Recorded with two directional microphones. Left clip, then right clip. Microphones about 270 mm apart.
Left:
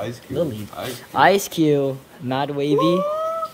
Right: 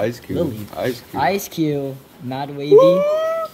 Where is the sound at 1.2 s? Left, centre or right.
Centre.